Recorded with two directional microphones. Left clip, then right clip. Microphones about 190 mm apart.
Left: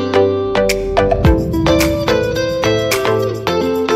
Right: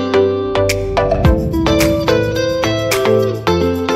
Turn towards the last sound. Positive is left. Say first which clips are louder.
# even
turn(degrees=0)  # may be behind; listen again after turning